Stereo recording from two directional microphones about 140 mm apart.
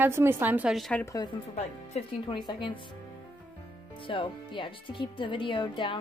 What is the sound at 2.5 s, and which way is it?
Speech, 35° left (ahead or behind).